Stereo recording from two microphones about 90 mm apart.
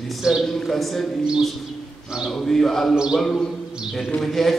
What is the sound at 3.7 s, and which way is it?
Mantra, centre (ahead or behind).